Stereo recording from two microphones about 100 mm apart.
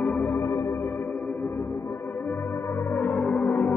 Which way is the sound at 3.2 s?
10° left (ahead or behind).